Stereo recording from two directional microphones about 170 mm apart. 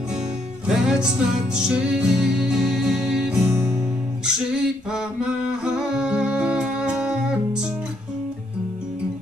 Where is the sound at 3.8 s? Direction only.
15° right (ahead or behind).